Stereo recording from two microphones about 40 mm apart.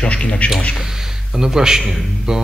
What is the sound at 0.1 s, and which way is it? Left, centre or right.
Speech, left.